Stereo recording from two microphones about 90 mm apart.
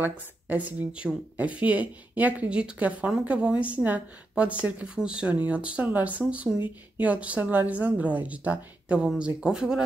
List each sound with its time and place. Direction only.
0.0 s speech: 20° right (ahead or behind)